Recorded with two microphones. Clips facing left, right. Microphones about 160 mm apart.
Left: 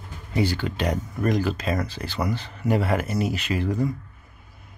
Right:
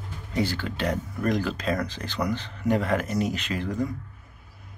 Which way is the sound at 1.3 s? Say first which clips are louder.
Left 1 dB; 5° left (ahead or behind).